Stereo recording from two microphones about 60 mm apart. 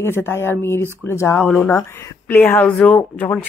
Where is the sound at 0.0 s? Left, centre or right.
Left.